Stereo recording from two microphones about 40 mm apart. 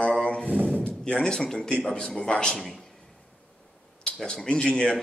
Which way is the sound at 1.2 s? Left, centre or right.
Centre.